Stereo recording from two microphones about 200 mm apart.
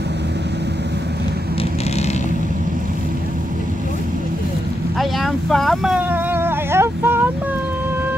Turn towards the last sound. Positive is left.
turn(degrees=-10)  # may be behind; listen again after turning